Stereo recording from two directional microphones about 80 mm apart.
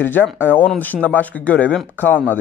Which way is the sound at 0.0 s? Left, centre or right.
Left.